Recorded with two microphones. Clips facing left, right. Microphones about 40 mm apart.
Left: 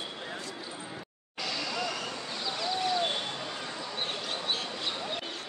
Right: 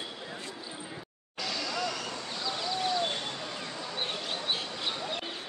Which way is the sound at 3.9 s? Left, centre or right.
Centre.